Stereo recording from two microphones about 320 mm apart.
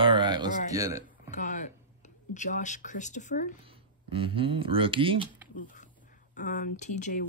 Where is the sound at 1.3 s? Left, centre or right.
Left.